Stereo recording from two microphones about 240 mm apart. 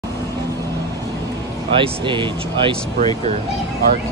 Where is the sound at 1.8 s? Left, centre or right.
Centre.